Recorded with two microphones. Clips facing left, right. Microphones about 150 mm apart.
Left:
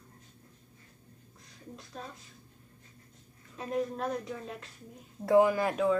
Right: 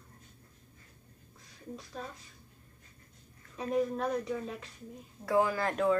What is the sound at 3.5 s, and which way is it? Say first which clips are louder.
Speech: right 2 dB; centre (ahead or behind).